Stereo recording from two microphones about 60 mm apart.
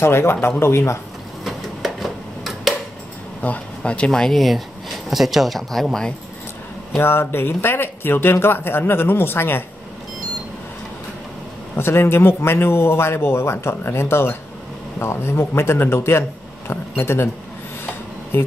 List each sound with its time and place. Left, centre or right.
0.0 s speech: left
1.4 s a sound: centre
3.4 s speech: left; by 5.9 s centre
7.0 s speech: left
11.7 s speech: left
18.3 s speech: left